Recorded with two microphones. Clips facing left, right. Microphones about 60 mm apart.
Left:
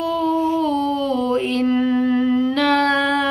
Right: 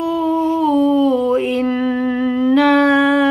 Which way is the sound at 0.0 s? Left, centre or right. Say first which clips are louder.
Right 2 dB; centre.